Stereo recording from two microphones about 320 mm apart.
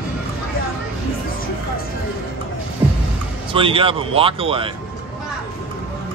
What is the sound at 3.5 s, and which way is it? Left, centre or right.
Speech, centre.